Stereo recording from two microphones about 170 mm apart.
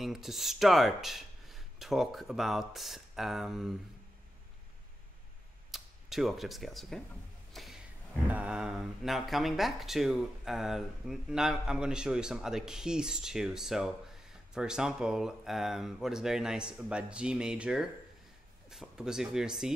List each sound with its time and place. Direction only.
0.0 s speech: centre (ahead or behind)
5.7 s speech: centre (ahead or behind)
7.5 s a sound: centre (ahead or behind)
8.3 s speech: 5° right (ahead or behind)